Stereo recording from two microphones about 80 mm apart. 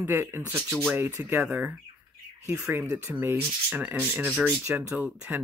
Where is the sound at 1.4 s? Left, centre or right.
Centre.